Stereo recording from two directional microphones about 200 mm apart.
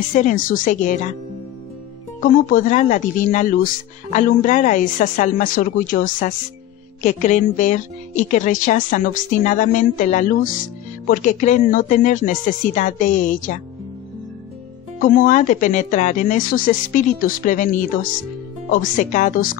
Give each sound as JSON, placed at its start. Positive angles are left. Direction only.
{"t": 0.1, "sound": "a woman's voice", "side_deg": 40}
{"t": 2.1, "sound": "a woman's voice", "side_deg": 40}
{"t": 15.0, "sound": "a woman's voice", "side_deg": 45}